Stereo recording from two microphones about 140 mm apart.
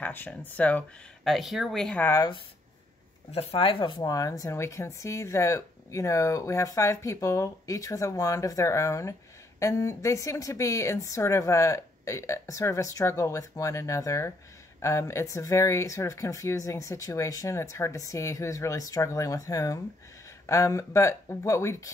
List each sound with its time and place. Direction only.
0.0 s speech: 10° left (ahead or behind)
3.3 s speech: 45° left (ahead or behind); by 21.9 s 20° left (ahead or behind)